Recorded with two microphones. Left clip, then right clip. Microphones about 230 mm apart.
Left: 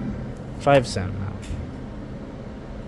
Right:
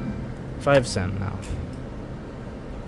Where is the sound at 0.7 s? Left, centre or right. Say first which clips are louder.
Left 2 dB; centre.